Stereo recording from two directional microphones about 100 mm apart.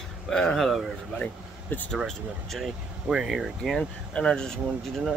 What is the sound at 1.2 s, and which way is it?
Speech, 15° left (ahead or behind).